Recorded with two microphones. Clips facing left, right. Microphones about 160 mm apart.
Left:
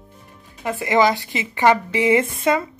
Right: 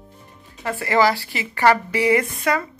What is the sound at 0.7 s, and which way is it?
Speech, 20° left (ahead or behind).